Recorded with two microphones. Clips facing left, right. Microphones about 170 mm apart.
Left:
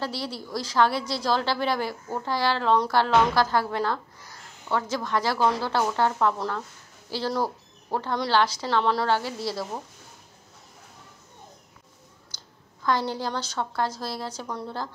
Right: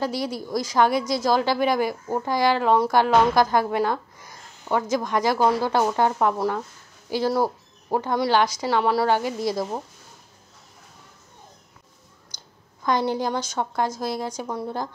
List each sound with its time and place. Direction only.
0.0 s a woman's voice: 15° right (ahead or behind)
12.3 s a sound: 15° right (ahead or behind)
12.8 s a woman's voice: 15° right (ahead or behind)